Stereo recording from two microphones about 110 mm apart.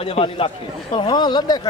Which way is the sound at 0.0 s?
60° left (ahead or behind).